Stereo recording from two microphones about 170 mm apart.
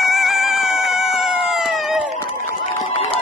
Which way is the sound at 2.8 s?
35° left (ahead or behind).